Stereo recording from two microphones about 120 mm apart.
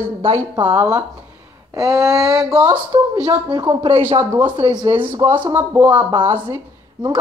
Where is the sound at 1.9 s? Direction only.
5° right (ahead or behind).